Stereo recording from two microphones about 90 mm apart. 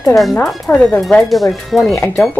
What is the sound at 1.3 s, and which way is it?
Speech, centre (ahead or behind).